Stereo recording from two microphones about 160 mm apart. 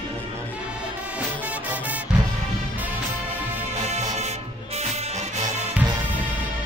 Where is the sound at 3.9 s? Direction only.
45° right (ahead or behind).